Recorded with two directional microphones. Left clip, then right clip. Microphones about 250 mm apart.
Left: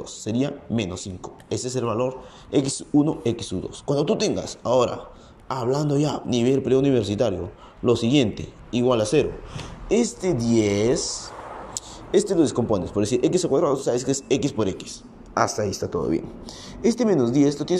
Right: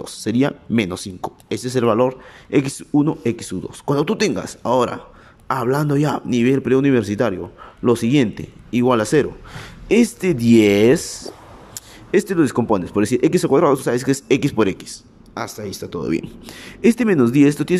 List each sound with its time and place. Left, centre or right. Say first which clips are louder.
0.0 s a man's voice: right 7 dB; right